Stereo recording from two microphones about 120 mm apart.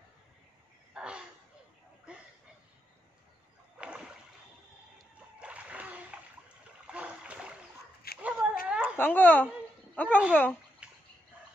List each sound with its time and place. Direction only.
0.9 s a sound: 10° right (ahead or behind)
3.7 s rowboat: 10° right (ahead or behind)
5.4 s splash: 10° right (ahead or behind)
6.9 s a sound: 10° right (ahead or behind)
8.2 s cat: 10° right (ahead or behind)
8.9 s speech: 15° left (ahead or behind)
10.8 s bathtub: 10° right (ahead or behind)